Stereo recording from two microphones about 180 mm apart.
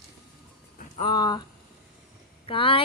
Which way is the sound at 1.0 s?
25° left (ahead or behind).